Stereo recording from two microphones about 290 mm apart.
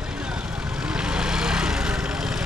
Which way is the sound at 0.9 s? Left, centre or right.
Centre.